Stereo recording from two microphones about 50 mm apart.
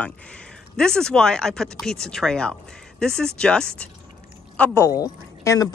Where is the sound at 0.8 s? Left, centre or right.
Centre.